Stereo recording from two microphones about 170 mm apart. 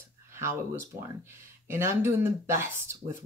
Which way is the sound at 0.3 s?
15° right (ahead or behind).